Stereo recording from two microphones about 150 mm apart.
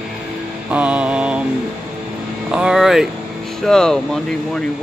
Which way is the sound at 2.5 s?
5° right (ahead or behind).